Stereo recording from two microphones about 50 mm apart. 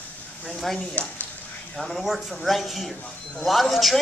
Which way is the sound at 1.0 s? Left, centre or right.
Left.